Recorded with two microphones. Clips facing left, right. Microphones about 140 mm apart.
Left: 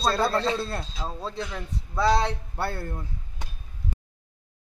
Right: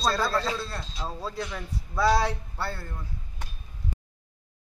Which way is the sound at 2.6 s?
55° left (ahead or behind).